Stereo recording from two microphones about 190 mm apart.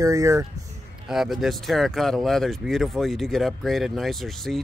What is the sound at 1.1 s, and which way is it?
A man's voice, centre (ahead or behind).